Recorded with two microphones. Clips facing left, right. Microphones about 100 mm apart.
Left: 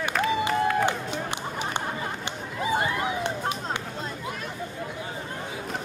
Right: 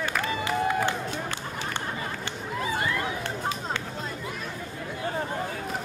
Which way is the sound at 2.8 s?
20° left (ahead or behind).